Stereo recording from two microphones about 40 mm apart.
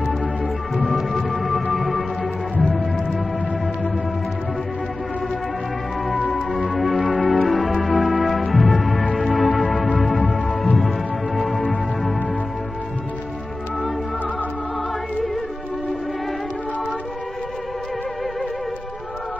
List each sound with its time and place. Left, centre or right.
0.8 s music: centre
6.1 s music: left
7.1 s music: centre